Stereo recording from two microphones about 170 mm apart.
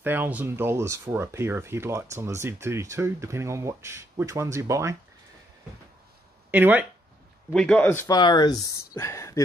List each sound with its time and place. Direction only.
0.0 s speech: 10° right (ahead or behind)
6.5 s speech: 10° right (ahead or behind)
7.5 s a man's voice: 5° left (ahead or behind)
8.1 s speech: 25° left (ahead or behind)